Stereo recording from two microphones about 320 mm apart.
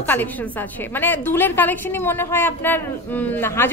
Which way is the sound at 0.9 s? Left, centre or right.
Centre.